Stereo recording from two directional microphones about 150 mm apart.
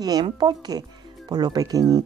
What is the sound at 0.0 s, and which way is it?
Speech, 30° right (ahead or behind).